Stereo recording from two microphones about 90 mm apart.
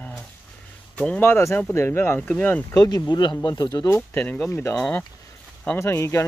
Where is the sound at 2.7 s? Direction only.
45° left (ahead or behind).